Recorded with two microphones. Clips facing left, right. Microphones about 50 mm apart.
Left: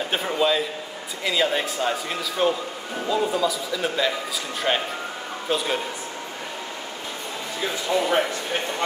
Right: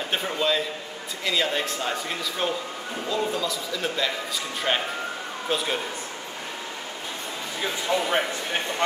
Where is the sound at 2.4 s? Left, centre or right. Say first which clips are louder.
Left 8 dB; centre.